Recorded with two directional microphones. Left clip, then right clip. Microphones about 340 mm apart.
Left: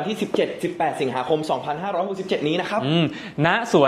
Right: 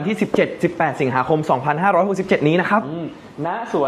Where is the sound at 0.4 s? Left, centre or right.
Right.